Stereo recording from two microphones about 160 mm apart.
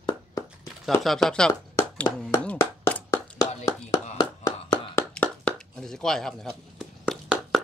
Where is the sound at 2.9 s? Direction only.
20° left (ahead or behind).